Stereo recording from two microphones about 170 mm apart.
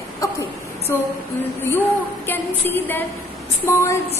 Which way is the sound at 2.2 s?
10° left (ahead or behind).